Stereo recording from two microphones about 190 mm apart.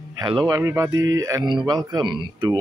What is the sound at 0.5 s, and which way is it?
A man's voice, 15° right (ahead or behind).